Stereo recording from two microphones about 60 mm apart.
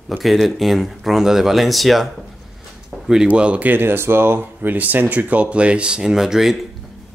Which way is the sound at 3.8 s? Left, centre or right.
Right.